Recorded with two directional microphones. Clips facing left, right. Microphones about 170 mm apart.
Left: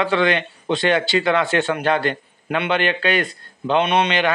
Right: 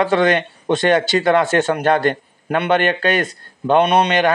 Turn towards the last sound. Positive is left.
turn(degrees=-40)  # may be behind; listen again after turning